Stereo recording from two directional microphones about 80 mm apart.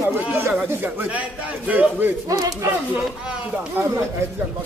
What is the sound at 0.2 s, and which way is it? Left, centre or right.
Speech, right.